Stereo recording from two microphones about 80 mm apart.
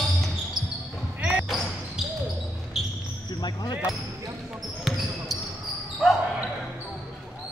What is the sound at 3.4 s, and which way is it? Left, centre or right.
Speech, left.